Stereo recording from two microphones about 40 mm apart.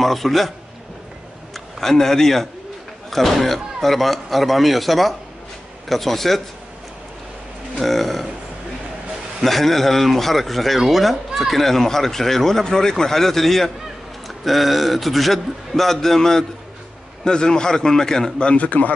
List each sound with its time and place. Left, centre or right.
0.0 s a man's voice: centre
1.8 s a man's voice: centre
7.8 s a man's voice: centre
9.4 s a man's voice: centre
11.6 s a man's voice: centre
18.5 s a man's voice: left